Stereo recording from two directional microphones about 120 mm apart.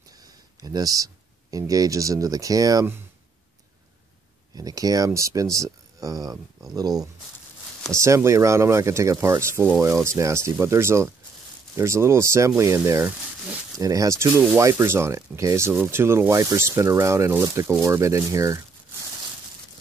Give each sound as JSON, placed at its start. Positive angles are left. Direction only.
{"t": 0.6, "sound": "speech", "side_deg": -30}
{"t": 4.6, "sound": "speech", "side_deg": -30}